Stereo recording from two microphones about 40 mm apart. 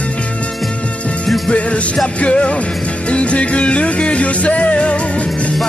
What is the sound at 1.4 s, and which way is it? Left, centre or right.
Music, left.